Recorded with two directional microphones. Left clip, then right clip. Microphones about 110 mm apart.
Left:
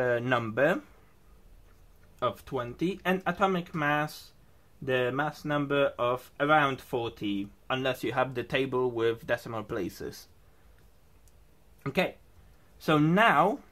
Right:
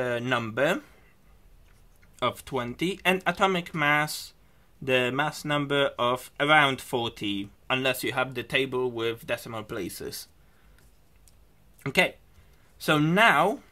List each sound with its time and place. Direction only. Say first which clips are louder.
0.0 s speech: even; 5° right (ahead or behind)
2.1 s speech: right 3 dB; 25° right (ahead or behind)
8.3 s speech: right 3 dB; centre (ahead or behind)
11.8 s speech: right 5 dB; 30° right (ahead or behind)
12.7 s speech: right 2 dB; 15° right (ahead or behind)